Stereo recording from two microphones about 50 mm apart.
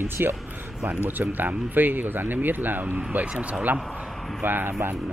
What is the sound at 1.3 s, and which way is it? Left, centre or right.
Speech, right.